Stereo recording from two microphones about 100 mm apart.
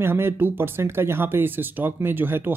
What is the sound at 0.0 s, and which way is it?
Speech, 25° right (ahead or behind).